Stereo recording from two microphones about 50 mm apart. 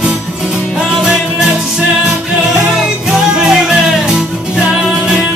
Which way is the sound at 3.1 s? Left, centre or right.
Centre.